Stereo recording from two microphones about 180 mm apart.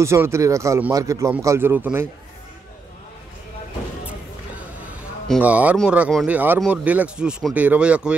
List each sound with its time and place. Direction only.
0.0 s a man's voice: 15° right (ahead or behind)
5.4 s a man's voice: 10° right (ahead or behind)